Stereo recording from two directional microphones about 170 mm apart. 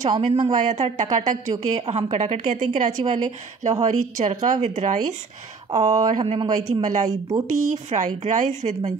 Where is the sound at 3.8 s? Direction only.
45° right (ahead or behind).